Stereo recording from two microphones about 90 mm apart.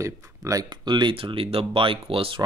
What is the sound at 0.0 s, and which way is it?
Speech, 35° right (ahead or behind).